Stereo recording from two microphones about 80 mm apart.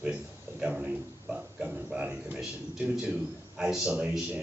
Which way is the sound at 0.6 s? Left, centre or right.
Centre.